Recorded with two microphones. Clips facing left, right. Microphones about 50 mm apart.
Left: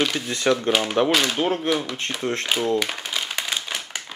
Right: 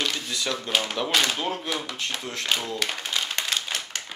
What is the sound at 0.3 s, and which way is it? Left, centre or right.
Speech, left.